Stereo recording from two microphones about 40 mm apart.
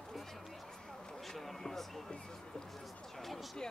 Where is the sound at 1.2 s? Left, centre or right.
Centre.